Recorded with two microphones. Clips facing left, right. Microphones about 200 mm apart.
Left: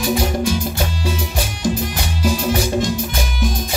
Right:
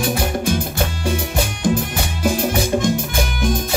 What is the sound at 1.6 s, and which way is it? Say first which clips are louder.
Music: even; 55° right (ahead or behind).